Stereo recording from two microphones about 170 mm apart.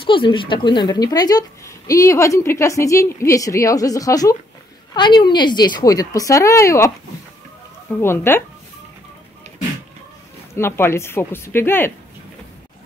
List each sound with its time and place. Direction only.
0.0 s speech: 30° left (ahead or behind)
8.0 s speech: 15° left (ahead or behind)
10.5 s speech: 15° left (ahead or behind)